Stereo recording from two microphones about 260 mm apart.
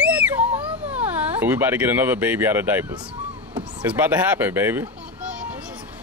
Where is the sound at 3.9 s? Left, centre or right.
Centre.